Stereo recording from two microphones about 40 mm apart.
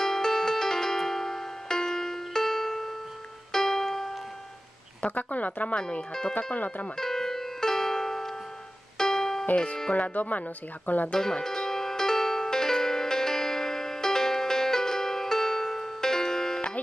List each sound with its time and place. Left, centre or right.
0.0 s music: centre
5.0 s speech: left
5.8 s speech: left
6.3 s speech: left
7.0 s music: centre
9.9 s speech: left
11.1 s speech: centre
11.4 s music: centre